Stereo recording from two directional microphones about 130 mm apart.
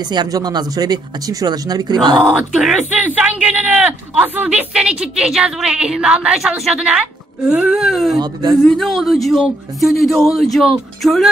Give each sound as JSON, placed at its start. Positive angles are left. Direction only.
{"t": 0.1, "sound": "speech", "side_deg": -30}
{"t": 2.2, "sound": "speech", "side_deg": -5}
{"t": 8.2, "sound": "speech", "side_deg": -35}
{"t": 8.6, "sound": "speech", "side_deg": 5}